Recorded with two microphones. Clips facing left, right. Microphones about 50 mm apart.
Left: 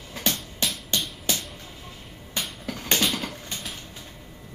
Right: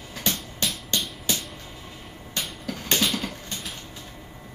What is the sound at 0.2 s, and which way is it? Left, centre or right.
Music, centre.